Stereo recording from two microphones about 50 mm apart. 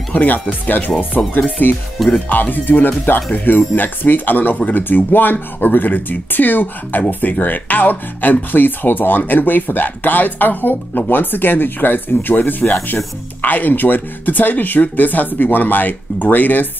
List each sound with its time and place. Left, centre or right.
0.1 s speech: left